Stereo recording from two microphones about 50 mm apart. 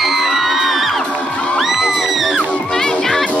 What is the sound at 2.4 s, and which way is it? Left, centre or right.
Music, left.